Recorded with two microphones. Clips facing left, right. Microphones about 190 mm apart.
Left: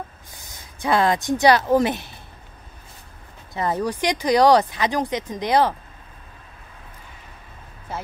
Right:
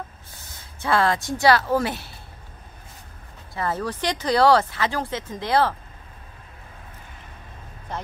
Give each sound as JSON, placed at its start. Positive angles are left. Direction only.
{"t": 0.7, "sound": "speech", "side_deg": 15}
{"t": 3.5, "sound": "speech", "side_deg": 15}
{"t": 7.9, "sound": "speech", "side_deg": 5}